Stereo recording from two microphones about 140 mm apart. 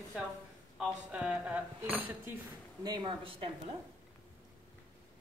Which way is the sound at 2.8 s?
35° right (ahead or behind).